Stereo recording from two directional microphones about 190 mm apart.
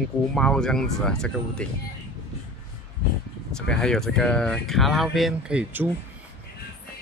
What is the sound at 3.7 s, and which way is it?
Speech, 5° left (ahead or behind).